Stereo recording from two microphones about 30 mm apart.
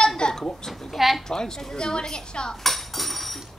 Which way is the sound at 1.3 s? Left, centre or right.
Left.